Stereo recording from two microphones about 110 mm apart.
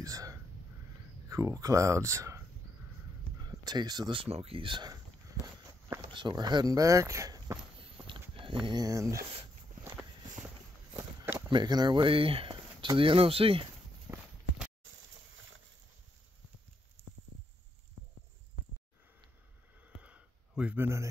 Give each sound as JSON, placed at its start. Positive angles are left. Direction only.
{"t": 0.0, "sound": "whispering", "side_deg": -30}
{"t": 1.3, "sound": "speech", "side_deg": -30}
{"t": 3.4, "sound": "speech", "side_deg": -40}
{"t": 4.1, "sound": "speech", "side_deg": -60}
{"t": 6.0, "sound": "speech", "side_deg": -45}
{"t": 7.8, "sound": "walk", "side_deg": -50}
{"t": 8.6, "sound": "speech", "side_deg": -35}
{"t": 11.4, "sound": "speech", "side_deg": -40}
{"t": 14.1, "sound": "clip-clop", "side_deg": -30}
{"t": 20.0, "sound": "a sound", "side_deg": -10}